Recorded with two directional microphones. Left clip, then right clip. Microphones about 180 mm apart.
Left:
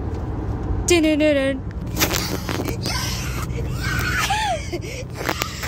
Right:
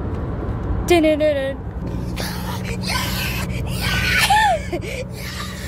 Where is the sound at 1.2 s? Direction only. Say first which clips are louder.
Left 1 dB; 30° left (ahead or behind).